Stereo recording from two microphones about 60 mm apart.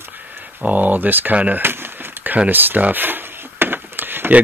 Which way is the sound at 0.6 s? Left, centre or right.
Right.